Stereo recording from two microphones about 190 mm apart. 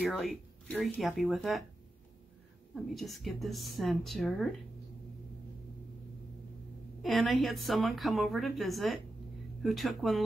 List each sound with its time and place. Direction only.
0.0 s a woman's voice: centre (ahead or behind)
2.7 s a woman's voice: centre (ahead or behind)
7.0 s a woman's voice: centre (ahead or behind)